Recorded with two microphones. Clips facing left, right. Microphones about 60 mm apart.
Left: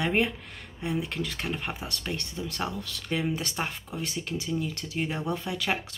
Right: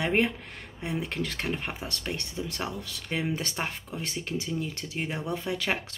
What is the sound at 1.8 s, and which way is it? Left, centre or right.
Speech, right.